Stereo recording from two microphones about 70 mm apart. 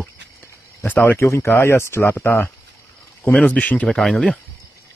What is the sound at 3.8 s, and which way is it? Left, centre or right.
Speech, centre.